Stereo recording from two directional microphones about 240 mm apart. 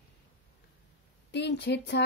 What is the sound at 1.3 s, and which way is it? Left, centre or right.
Speech, left.